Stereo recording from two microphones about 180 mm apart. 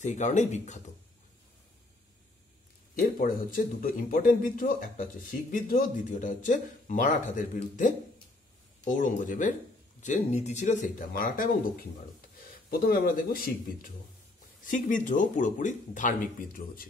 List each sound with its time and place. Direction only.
0.0 s speech: 40° left (ahead or behind)
3.2 s speech: 50° left (ahead or behind)
8.8 s speech: 45° left (ahead or behind)
12.6 s speech: 55° left (ahead or behind)
14.7 s speech: 45° left (ahead or behind)